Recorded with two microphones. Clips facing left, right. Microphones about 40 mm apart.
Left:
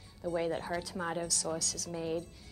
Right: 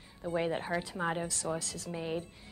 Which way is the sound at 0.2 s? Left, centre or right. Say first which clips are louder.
Right 1 dB; right.